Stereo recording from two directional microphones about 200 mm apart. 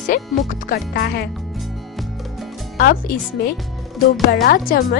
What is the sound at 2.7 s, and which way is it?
Speech, 50° left (ahead or behind).